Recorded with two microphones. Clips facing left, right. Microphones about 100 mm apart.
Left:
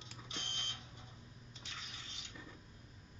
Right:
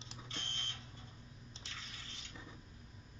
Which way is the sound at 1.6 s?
20° left (ahead or behind).